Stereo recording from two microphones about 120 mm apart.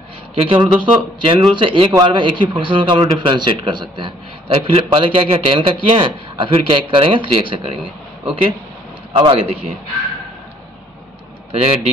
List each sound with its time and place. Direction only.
0.3 s a man's voice: 50° right (ahead or behind)
4.5 s a man's voice: 55° right (ahead or behind)
11.5 s a man's voice: 60° right (ahead or behind)